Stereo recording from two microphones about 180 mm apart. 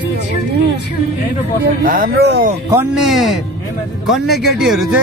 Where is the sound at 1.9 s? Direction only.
55° right (ahead or behind).